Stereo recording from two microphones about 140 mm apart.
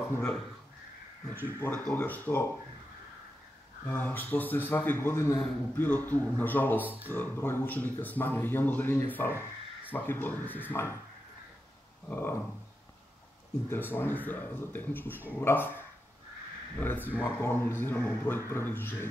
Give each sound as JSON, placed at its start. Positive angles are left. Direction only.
{"t": 1.4, "sound": "speech", "side_deg": 15}
{"t": 3.8, "sound": "speech", "side_deg": 15}
{"t": 12.1, "sound": "speech", "side_deg": 15}
{"t": 13.7, "sound": "speech", "side_deg": 15}
{"t": 16.8, "sound": "speech", "side_deg": 15}